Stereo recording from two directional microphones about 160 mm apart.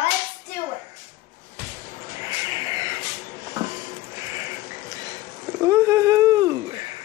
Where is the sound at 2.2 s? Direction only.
20° right (ahead or behind).